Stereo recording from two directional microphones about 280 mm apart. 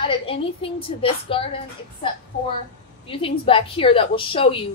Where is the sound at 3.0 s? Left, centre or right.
Centre.